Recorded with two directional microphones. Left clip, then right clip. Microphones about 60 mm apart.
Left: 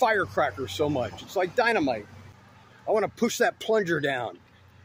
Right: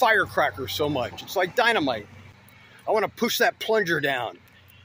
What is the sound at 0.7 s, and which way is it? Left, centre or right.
Speech, left.